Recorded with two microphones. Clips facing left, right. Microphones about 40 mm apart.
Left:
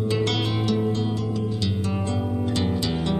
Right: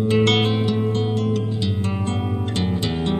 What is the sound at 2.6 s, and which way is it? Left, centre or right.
Music, right.